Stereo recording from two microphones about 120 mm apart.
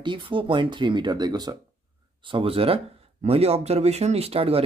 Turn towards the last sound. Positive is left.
turn(degrees=-55)  # may be behind; listen again after turning